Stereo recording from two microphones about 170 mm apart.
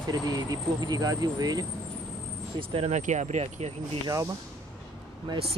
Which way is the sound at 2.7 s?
40° right (ahead or behind).